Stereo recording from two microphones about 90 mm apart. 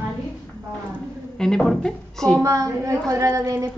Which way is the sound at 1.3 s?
5° left (ahead or behind).